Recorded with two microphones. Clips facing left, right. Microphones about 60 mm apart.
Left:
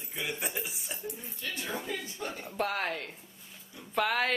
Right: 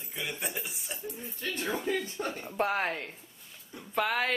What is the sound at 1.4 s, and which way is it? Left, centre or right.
Speech, right.